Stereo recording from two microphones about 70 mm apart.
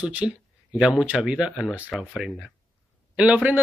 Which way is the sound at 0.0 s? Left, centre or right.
Centre.